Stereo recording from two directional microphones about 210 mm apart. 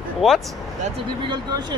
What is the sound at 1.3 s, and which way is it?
Speech, 20° right (ahead or behind).